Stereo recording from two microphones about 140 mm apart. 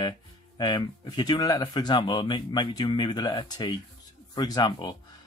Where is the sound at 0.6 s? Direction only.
30° left (ahead or behind).